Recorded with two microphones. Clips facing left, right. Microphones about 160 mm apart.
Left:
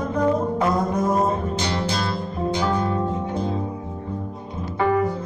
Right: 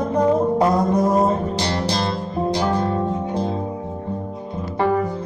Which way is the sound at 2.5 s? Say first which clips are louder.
Right 2 dB; 65° right (ahead or behind).